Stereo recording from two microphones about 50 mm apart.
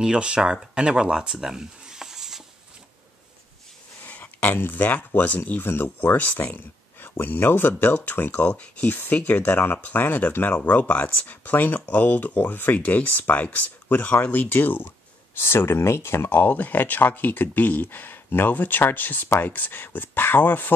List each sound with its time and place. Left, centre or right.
0.0 s speech: centre
4.0 s a sound: left
4.5 s speech: left
15.3 s speech: left